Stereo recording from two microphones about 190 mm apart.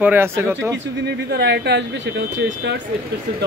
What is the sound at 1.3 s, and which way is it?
Speech, 65° right (ahead or behind).